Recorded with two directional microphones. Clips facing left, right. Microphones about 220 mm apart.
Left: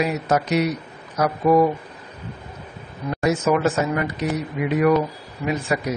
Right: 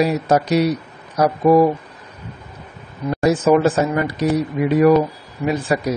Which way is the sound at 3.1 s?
30° right (ahead or behind).